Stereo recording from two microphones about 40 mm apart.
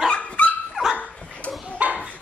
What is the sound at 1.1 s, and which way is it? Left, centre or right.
Dog, left.